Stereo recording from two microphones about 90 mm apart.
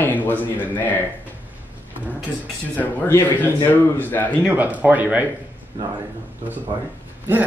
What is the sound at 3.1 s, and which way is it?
A man's voice, 20° left (ahead or behind).